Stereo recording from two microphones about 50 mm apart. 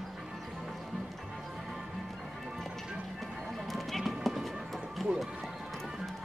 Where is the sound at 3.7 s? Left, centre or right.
Centre.